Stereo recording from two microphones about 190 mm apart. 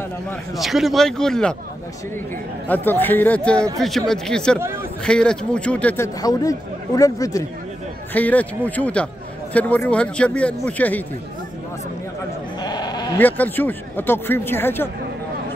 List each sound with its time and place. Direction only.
0.6 s a man's voice: centre (ahead or behind)
2.7 s a man's voice: 10° left (ahead or behind)
12.6 s sheep: 20° left (ahead or behind)
13.2 s a man's voice: 10° left (ahead or behind)